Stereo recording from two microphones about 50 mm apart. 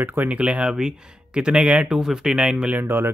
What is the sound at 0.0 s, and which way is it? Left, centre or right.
Speech, right.